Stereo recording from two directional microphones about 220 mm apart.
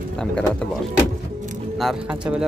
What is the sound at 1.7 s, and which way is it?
Speech, centre (ahead or behind).